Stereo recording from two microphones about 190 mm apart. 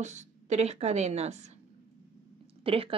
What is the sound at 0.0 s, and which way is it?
Speech, 40° right (ahead or behind).